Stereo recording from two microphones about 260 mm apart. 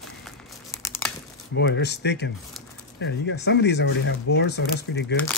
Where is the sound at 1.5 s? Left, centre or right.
Left.